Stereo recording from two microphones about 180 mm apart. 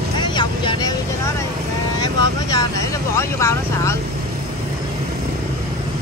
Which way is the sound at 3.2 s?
15° left (ahead or behind).